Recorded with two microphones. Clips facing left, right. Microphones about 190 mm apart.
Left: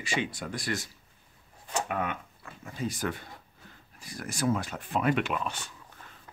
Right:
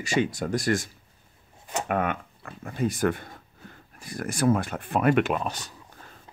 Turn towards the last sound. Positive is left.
turn(degrees=-40)  # may be behind; listen again after turning